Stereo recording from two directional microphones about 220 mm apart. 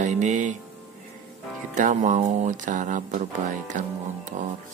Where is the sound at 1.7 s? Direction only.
35° right (ahead or behind).